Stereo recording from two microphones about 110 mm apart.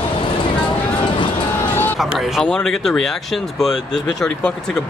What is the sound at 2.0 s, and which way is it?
Speech, centre (ahead or behind).